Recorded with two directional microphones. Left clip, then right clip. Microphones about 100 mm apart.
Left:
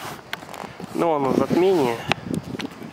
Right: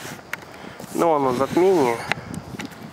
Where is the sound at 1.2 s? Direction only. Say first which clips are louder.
Right 1 dB; 15° right (ahead or behind).